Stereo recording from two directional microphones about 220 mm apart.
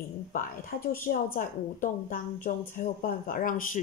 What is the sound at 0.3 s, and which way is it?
A woman's voice, 35° left (ahead or behind).